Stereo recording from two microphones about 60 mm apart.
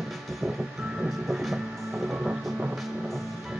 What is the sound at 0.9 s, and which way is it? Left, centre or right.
Train, centre.